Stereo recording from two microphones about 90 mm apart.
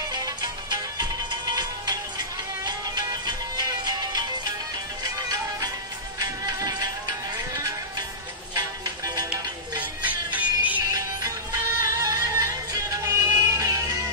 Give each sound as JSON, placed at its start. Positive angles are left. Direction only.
{"t": 0.1, "sound": "music", "side_deg": -50}
{"t": 6.1, "sound": "music", "side_deg": -45}
{"t": 8.5, "sound": "music", "side_deg": -45}
{"t": 9.3, "sound": "music", "side_deg": -20}
{"t": 11.8, "sound": "music", "side_deg": -40}